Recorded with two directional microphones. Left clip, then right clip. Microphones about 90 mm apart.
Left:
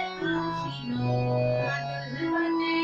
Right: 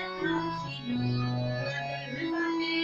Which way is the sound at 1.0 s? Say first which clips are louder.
Left 9 dB; 25° left (ahead or behind).